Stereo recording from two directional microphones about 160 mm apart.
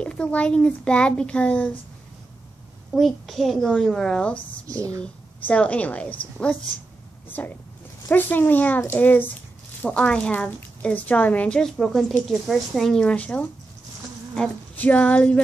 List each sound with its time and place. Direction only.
0.0 s a woman's voice: 5° left (ahead or behind)
2.9 s a child's voice: centre (ahead or behind)
4.6 s speech: 20° right (ahead or behind)
5.5 s a woman's voice: 10° left (ahead or behind)
7.2 s a woman's voice: 10° left (ahead or behind)